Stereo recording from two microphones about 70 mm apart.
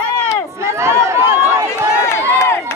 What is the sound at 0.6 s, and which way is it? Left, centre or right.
Run, right.